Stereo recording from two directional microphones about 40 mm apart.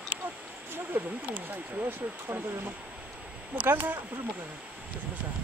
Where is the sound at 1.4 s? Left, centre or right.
Right.